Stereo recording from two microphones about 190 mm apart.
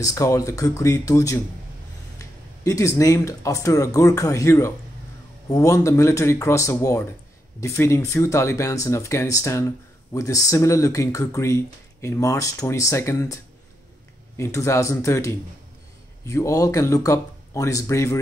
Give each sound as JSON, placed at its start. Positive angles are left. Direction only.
{"t": 0.0, "sound": "speech", "side_deg": 15}